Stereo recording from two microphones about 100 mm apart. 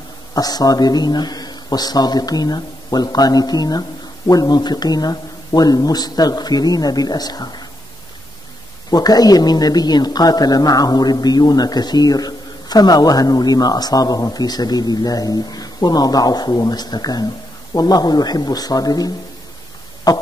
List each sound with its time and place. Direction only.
0.3 s speech: 40° left (ahead or behind)
8.9 s speech: 40° left (ahead or behind)